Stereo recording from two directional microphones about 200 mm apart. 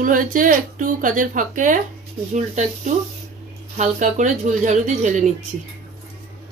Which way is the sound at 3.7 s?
40° right (ahead or behind).